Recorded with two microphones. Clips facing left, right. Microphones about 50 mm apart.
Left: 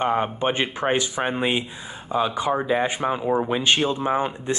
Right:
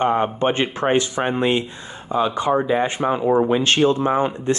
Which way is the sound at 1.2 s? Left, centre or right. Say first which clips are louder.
Right 3 dB; centre.